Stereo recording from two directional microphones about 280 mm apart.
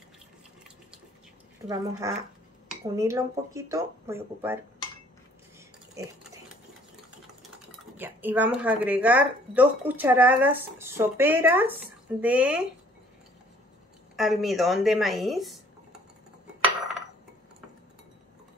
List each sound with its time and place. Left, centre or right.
1.7 s speech: centre
5.9 s pig: centre
8.0 s speech: centre
14.1 s a woman's voice: centre